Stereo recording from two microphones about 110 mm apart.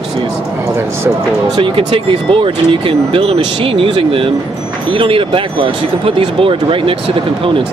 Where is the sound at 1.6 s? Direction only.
55° right (ahead or behind).